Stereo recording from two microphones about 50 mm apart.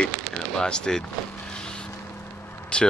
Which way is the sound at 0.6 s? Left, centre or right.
Centre.